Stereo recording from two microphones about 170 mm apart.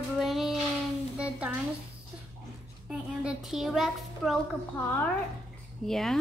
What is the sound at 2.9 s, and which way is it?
A child's voice, 5° right (ahead or behind).